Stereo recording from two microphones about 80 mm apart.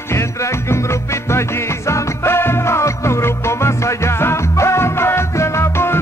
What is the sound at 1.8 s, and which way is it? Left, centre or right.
Music, left.